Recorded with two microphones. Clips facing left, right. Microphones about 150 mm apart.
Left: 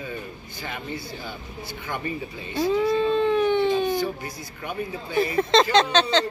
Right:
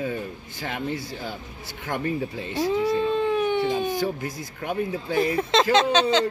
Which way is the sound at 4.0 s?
90° right.